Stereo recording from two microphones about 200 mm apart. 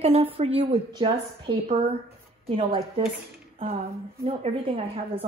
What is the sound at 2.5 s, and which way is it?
Speech, 25° right (ahead or behind).